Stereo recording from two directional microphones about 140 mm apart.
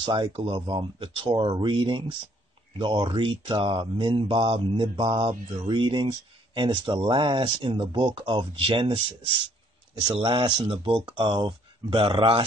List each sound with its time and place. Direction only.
0.0 s speech: 35° right (ahead or behind)
10.1 s speech: 35° right (ahead or behind)